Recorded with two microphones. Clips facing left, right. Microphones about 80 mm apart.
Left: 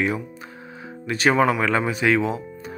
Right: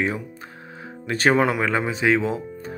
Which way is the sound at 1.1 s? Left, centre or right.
Right.